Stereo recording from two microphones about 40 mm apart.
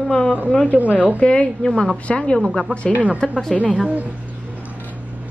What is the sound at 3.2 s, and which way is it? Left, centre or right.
Speech, centre.